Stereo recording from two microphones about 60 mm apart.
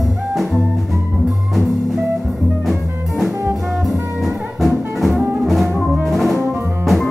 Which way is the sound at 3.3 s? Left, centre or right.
Right.